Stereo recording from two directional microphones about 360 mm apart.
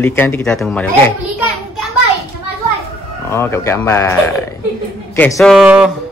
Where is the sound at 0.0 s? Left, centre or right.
Centre.